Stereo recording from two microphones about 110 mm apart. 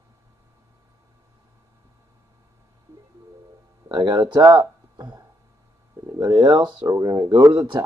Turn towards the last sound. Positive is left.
turn(degrees=-35)  # may be behind; listen again after turning